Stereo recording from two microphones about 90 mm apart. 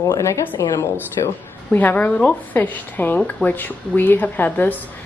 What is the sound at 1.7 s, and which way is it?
Speech, 20° left (ahead or behind).